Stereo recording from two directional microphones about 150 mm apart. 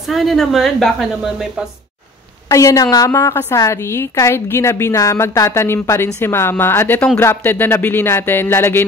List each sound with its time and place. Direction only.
0.1 s a woman's voice: centre (ahead or behind)
2.5 s a woman's voice: 20° left (ahead or behind)